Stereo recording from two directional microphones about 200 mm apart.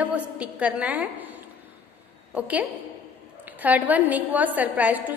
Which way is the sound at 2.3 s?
10° right (ahead or behind).